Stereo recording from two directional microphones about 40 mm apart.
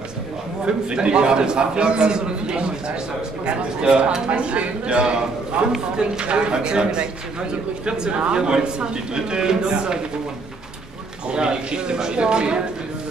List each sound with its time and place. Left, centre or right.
0.7 s a man's voice: right
11.2 s a man's voice: right